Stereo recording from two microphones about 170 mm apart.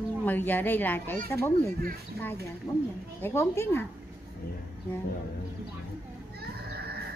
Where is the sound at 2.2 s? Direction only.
70° right (ahead or behind).